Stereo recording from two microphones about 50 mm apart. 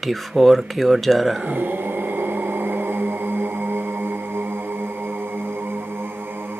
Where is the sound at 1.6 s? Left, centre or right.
Right.